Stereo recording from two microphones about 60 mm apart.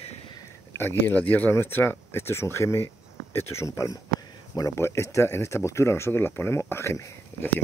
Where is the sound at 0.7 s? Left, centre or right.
Left.